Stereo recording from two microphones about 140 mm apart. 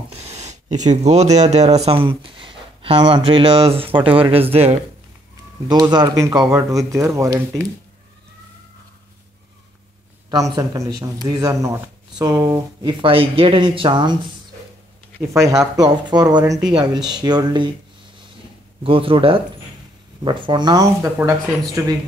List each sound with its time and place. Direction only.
0.2 s speech: 55° right (ahead or behind)
5.7 s speech: 30° right (ahead or behind)
10.3 s speech: 25° right (ahead or behind)
13.0 s speech: 40° right (ahead or behind)
15.3 s speech: 25° right (ahead or behind)
18.8 s speech: 40° right (ahead or behind); by 21.9 s 20° right (ahead or behind)